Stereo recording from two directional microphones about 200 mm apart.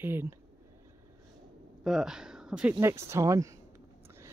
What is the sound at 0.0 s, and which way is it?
Speech, 10° right (ahead or behind).